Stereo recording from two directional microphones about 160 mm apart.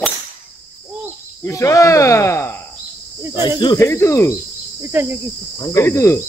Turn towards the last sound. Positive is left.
turn(degrees=15)  # may be behind; listen again after turning